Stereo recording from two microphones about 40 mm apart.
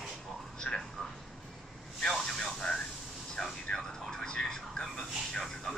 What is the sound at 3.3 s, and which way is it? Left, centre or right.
Vehicle, centre.